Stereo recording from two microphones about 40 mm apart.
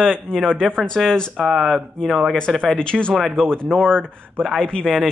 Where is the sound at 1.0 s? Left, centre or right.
Centre.